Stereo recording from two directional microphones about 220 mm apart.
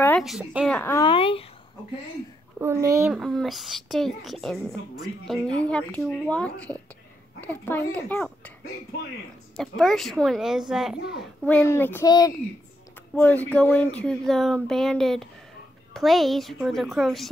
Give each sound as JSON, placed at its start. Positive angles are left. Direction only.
{"t": 0.0, "sound": "speech", "side_deg": 5}
{"t": 0.7, "sound": "speech", "side_deg": 10}
{"t": 2.6, "sound": "speech", "side_deg": -15}
{"t": 3.1, "sound": "speech", "side_deg": 0}
{"t": 5.6, "sound": "speech", "side_deg": 5}
{"t": 9.6, "sound": "speech", "side_deg": 0}
{"t": 11.0, "sound": "a child's voice", "side_deg": 50}
{"t": 11.4, "sound": "speech", "side_deg": 10}